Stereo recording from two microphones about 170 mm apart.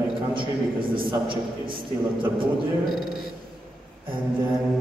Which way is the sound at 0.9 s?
30° right (ahead or behind).